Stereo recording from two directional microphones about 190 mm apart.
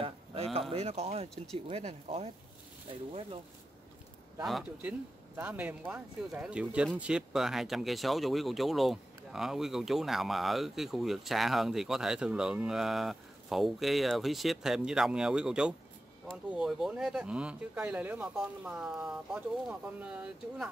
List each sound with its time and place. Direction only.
0.0 s speech: 30° right (ahead or behind)
4.4 s speech: centre (ahead or behind)